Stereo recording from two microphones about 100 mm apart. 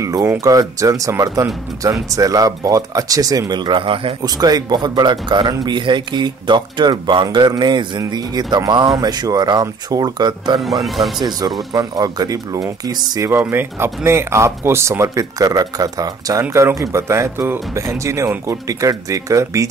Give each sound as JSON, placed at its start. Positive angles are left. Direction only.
{"t": 0.0, "sound": "speech", "side_deg": -30}
{"t": 4.2, "sound": "speech", "side_deg": -40}
{"t": 10.6, "sound": "speech", "side_deg": 0}
{"t": 11.1, "sound": "speech", "side_deg": -45}
{"t": 13.4, "sound": "speech", "side_deg": -20}
{"t": 16.4, "sound": "speech", "side_deg": -25}